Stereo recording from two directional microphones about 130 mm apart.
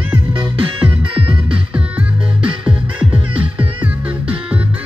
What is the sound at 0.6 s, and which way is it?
Music, 40° right (ahead or behind).